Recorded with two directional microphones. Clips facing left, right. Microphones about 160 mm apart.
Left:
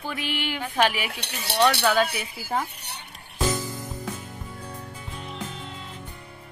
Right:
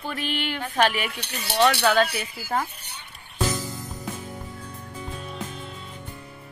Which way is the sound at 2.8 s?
65° left (ahead or behind).